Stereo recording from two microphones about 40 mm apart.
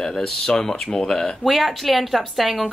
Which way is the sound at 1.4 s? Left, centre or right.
Centre.